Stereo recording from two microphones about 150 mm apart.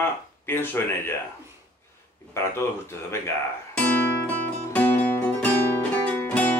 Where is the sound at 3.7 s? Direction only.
10° left (ahead or behind).